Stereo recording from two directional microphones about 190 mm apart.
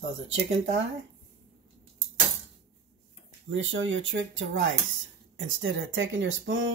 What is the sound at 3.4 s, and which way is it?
Speech, 90° right.